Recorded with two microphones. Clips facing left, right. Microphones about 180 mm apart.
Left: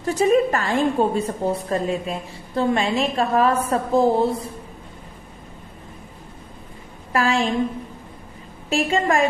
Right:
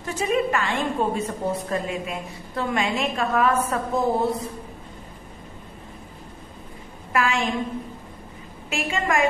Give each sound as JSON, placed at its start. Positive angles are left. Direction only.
{"t": 0.0, "sound": "a woman's voice", "side_deg": 40}
{"t": 7.1, "sound": "a sound", "side_deg": 35}
{"t": 8.6, "sound": "a woman's voice", "side_deg": 35}